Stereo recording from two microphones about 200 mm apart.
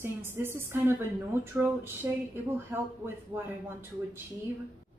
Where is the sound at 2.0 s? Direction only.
15° right (ahead or behind).